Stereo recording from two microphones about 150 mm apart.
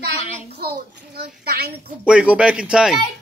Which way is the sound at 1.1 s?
90° right.